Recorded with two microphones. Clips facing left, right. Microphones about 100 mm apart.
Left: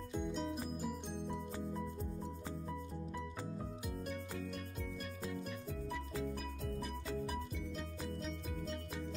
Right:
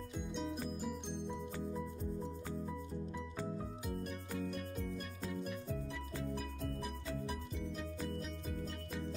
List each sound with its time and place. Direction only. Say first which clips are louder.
0.1 s music: left 3 dB; centre (ahead or behind)